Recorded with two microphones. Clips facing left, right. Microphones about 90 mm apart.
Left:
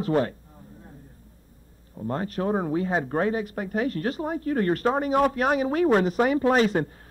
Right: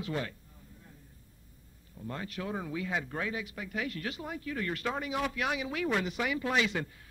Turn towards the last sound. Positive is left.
turn(degrees=40)  # may be behind; listen again after turning